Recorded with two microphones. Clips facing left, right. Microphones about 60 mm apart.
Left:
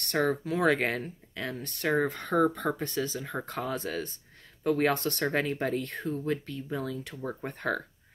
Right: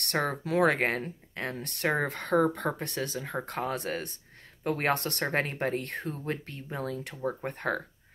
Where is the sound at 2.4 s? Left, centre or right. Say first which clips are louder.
Left 1 dB; right.